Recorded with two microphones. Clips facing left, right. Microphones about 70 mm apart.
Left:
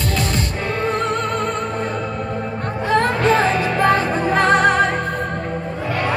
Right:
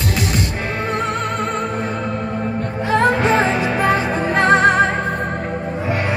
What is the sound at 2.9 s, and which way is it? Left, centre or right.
Music, centre.